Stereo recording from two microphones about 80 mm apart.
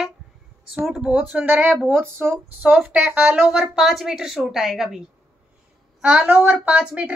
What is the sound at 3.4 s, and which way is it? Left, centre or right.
A woman's voice, centre.